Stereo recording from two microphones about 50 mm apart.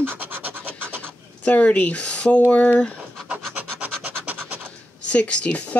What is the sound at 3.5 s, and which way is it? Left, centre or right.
Rub, right.